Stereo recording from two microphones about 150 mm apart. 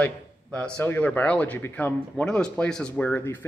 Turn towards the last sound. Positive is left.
turn(degrees=10)  # may be behind; listen again after turning